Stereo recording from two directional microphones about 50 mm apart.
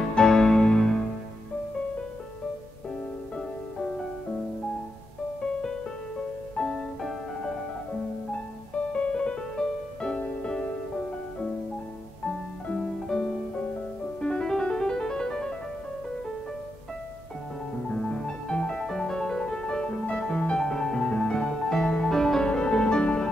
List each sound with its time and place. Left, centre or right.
0.1 s music: centre
6.5 s music: centre
7.0 s music: centre
8.9 s music: left
12.3 s music: centre
17.8 s music: centre
22.5 s music: centre